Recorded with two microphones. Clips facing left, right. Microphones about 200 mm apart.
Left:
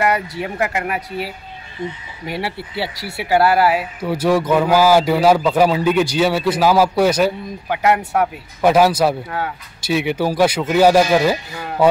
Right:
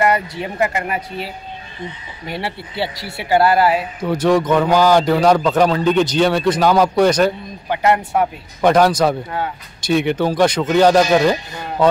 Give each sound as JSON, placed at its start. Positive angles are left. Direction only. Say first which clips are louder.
{"t": 0.4, "sound": "speech", "louder": "right 1 dB", "side_deg": 10}